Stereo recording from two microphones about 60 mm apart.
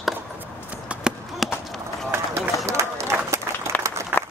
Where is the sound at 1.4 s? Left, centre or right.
Centre.